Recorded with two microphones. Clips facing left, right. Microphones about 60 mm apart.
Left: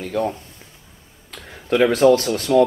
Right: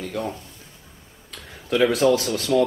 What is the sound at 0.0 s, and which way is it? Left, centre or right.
Speech, left.